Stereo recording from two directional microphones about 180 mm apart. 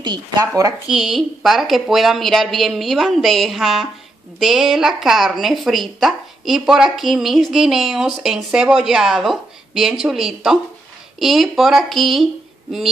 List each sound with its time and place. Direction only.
0.0 s speech: 25° right (ahead or behind)
0.8 s speech: centre (ahead or behind)